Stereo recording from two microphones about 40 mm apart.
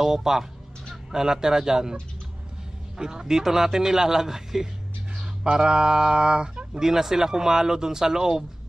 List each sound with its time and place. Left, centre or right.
0.0 s speech: centre
3.0 s speech: centre